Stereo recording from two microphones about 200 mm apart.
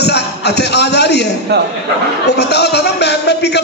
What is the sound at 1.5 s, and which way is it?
Speech, 55° right (ahead or behind).